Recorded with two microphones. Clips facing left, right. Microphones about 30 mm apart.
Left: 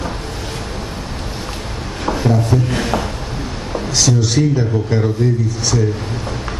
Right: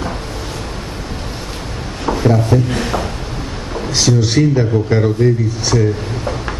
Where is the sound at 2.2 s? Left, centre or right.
Centre.